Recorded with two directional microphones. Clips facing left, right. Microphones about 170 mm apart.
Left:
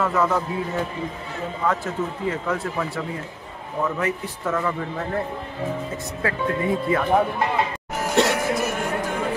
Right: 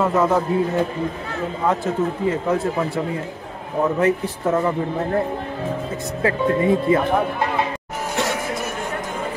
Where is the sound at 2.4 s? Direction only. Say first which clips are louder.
Right 5 dB; 20° right (ahead or behind).